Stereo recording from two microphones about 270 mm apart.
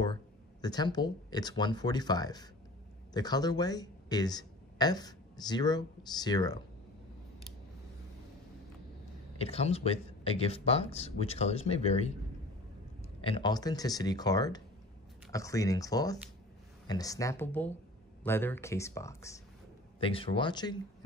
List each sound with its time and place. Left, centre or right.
0.6 s speech: centre
9.4 s speech: left
13.2 s speech: centre